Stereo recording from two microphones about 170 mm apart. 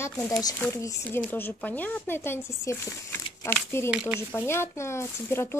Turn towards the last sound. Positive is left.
turn(degrees=15)  # may be behind; listen again after turning